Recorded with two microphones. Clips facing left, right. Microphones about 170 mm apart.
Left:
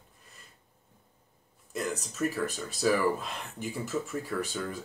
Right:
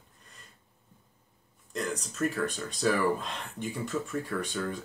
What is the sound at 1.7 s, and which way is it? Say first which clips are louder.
Speech: even; 5° left (ahead or behind).